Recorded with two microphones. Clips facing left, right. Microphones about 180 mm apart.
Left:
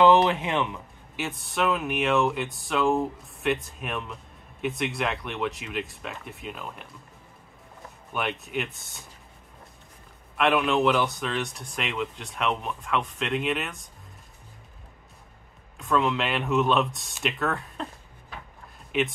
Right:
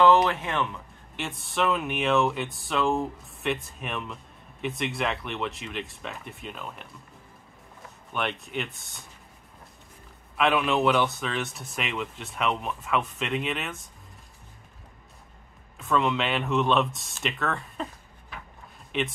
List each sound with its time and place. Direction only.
0.0 s speech: 15° left (ahead or behind)
1.1 s speech: centre (ahead or behind)
8.1 s speech: 5° left (ahead or behind)
10.3 s speech: centre (ahead or behind)
15.8 s speech: centre (ahead or behind)
18.9 s speech: centre (ahead or behind)